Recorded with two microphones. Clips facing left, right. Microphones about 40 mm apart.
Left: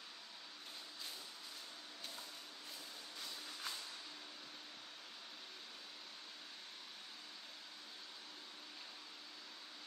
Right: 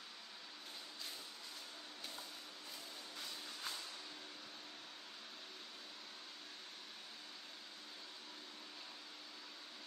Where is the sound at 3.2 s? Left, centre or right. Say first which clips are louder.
Even; centre.